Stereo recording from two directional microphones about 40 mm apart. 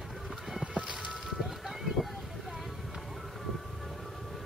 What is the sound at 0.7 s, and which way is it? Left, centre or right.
Music, right.